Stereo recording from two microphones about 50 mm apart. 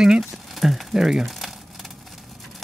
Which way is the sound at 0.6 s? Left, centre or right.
Centre.